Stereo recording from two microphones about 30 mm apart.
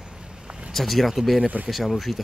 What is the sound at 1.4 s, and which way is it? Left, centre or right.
Speech, right.